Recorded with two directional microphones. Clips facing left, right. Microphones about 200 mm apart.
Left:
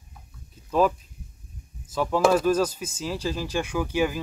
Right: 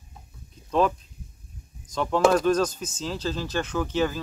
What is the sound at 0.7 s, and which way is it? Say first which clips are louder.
Speech: left 1 dB; 5° left (ahead or behind).